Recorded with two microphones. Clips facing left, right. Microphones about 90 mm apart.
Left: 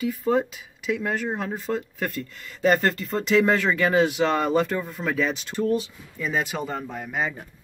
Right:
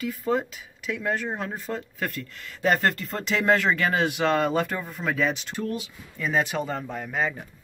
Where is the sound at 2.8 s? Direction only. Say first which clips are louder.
Left 2 dB; centre (ahead or behind).